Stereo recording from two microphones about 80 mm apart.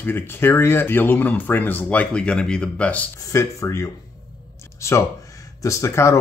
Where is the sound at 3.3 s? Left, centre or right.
Left.